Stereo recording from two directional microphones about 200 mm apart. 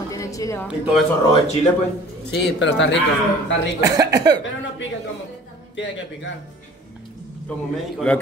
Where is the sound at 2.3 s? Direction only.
60° left (ahead or behind).